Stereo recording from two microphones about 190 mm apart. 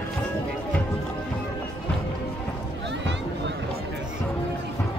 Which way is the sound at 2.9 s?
65° right (ahead or behind).